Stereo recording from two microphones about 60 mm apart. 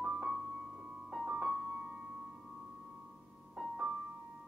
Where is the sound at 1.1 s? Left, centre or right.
Centre.